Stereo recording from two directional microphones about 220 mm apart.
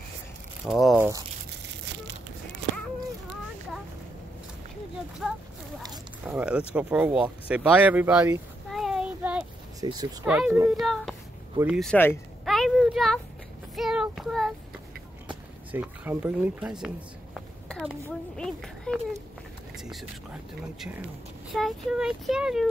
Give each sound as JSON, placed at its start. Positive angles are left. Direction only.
{"t": 0.7, "sound": "speech", "side_deg": 0}
{"t": 5.2, "sound": "speech", "side_deg": -5}
{"t": 9.8, "sound": "speech", "side_deg": -15}
{"t": 10.2, "sound": "speech", "side_deg": -5}
{"t": 10.7, "sound": "a sound", "side_deg": 0}
{"t": 11.5, "sound": "speech", "side_deg": -5}
{"t": 15.7, "sound": "speech", "side_deg": -10}
{"t": 16.8, "sound": "a sound", "side_deg": 0}
{"t": 18.3, "sound": "speech", "side_deg": 5}
{"t": 21.5, "sound": "speech", "side_deg": 0}